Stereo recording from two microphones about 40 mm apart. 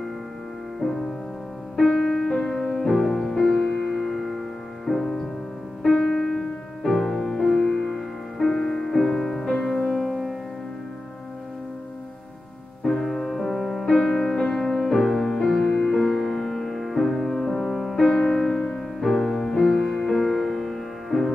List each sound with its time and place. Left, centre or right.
2.0 s music: centre
2.3 s music: left
2.7 s music: centre
3.9 s music: centre
5.8 s music: centre
12.8 s music: centre
14.8 s music: centre
18.0 s music: centre